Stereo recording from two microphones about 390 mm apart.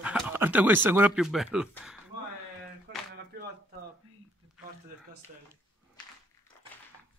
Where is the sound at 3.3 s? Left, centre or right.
Right.